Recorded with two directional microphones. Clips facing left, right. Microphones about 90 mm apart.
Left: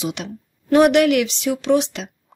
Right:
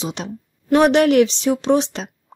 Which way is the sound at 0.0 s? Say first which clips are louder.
Even; 30° right (ahead or behind).